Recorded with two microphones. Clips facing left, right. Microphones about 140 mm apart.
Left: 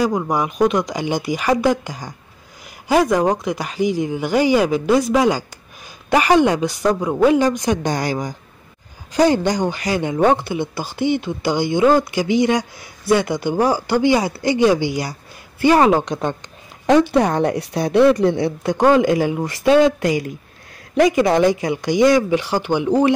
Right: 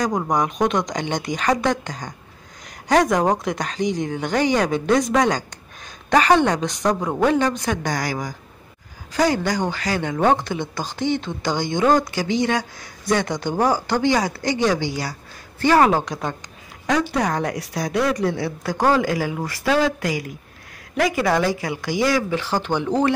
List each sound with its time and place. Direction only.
0.3 s a woman's voice: 5° left (ahead or behind)